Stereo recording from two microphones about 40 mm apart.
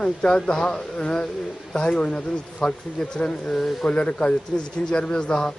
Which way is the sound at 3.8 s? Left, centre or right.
Left.